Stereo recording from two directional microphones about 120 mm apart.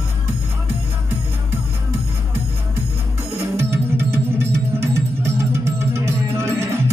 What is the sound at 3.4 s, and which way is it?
Music, 20° right (ahead or behind).